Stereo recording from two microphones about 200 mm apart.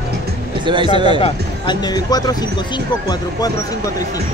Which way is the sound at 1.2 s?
20° left (ahead or behind).